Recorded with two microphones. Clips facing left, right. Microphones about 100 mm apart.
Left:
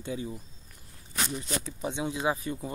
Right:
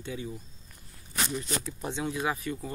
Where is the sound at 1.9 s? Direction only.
20° left (ahead or behind).